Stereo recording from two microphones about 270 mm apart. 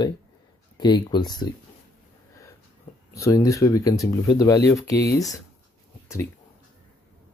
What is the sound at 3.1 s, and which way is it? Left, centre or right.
Speech, centre.